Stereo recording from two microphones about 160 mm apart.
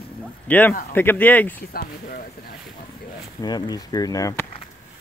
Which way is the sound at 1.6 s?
65° left (ahead or behind).